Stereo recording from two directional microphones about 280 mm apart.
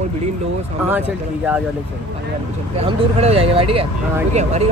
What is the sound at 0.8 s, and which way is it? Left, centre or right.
Speech, centre.